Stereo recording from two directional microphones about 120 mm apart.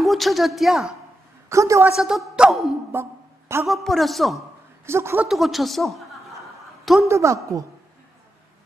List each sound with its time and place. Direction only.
0.0 s a woman's voice: centre (ahead or behind)
1.5 s a woman's voice: 25° right (ahead or behind)
2.0 s speech: centre (ahead or behind)
2.9 s a sound: 20° right (ahead or behind)
3.6 s speech: centre (ahead or behind)
4.8 s a woman's voice: 20° right (ahead or behind)
5.3 s speech: centre (ahead or behind)
6.8 s a sound: centre (ahead or behind)
7.1 s a woman's voice: 25° right (ahead or behind)